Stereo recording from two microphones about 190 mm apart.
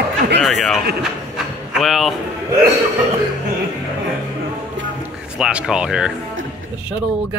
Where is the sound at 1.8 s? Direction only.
Centre (ahead or behind).